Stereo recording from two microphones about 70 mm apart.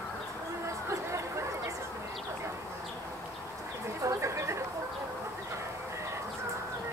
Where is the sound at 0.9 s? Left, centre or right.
Right.